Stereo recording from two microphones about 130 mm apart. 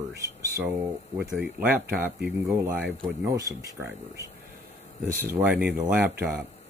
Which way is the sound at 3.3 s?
25° right (ahead or behind).